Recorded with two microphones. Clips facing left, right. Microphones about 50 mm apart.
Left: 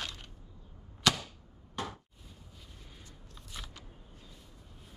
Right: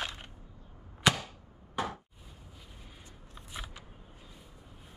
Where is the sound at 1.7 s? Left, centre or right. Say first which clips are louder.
Right 4 dB; centre.